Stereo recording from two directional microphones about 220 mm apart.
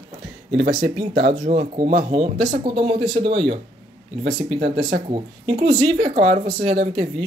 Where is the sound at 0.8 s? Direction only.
25° right (ahead or behind).